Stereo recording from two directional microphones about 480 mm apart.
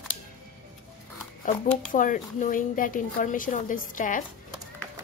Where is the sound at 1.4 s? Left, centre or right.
Centre.